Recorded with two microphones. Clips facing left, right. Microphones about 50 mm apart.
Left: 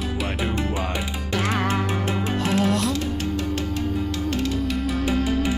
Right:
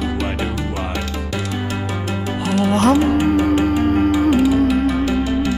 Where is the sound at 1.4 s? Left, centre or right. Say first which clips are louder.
Left 4 dB; left.